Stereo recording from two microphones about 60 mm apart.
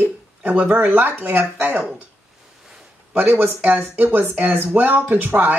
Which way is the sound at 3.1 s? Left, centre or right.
Right.